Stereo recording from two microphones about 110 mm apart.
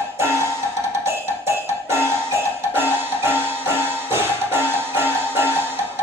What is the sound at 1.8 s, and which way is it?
Music, 25° right (ahead or behind).